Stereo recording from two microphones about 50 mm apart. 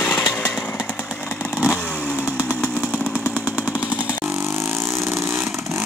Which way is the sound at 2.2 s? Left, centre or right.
Right.